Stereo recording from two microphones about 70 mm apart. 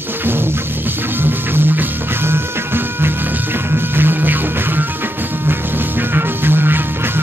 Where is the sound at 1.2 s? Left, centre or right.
Right.